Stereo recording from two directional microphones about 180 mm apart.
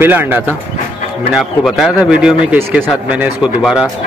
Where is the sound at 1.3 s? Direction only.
Centre (ahead or behind).